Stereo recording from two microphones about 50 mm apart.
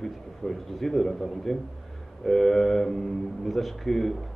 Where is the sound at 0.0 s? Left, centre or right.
Centre.